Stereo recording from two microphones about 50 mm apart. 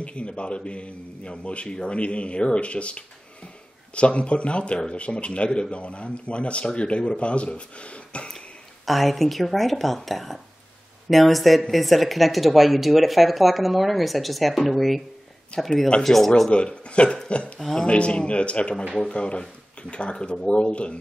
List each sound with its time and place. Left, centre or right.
0.0 s a man's voice: left
8.8 s speech: centre
16.4 s a man's voice: left
17.6 s speech: centre
17.8 s a man's voice: left